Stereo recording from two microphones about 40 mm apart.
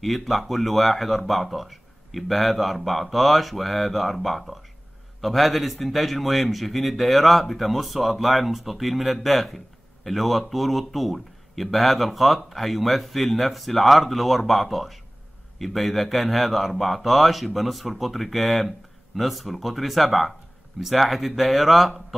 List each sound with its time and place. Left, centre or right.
0.0 s speech: centre